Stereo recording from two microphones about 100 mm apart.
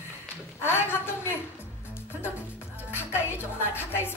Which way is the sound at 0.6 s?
25° left (ahead or behind).